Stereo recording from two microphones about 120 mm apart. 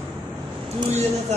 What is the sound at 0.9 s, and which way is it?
Speech, 65° right (ahead or behind).